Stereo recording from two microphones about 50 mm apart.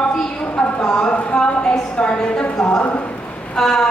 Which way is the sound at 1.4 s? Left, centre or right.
Left.